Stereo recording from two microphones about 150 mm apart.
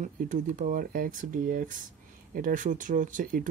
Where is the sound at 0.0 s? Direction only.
60° right (ahead or behind).